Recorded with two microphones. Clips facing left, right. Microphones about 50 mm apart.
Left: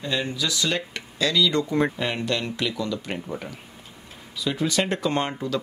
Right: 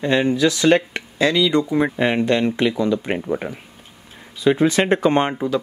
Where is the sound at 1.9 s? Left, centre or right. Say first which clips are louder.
Right 8 dB; right.